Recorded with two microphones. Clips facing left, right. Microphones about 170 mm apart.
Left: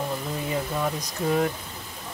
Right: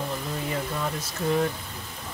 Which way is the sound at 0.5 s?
15° left (ahead or behind).